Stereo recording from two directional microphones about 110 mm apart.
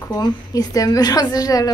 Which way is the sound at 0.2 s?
35° left (ahead or behind).